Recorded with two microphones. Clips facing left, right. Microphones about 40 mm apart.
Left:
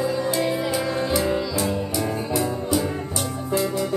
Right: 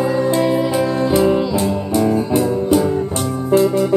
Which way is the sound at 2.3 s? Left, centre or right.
Right.